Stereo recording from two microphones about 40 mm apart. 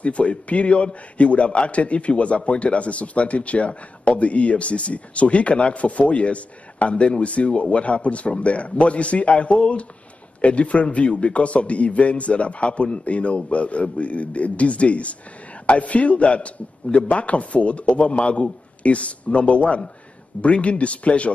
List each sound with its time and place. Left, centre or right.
0.0 s a man's voice: left